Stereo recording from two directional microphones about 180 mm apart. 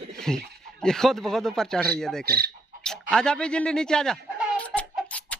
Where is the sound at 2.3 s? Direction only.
55° right (ahead or behind).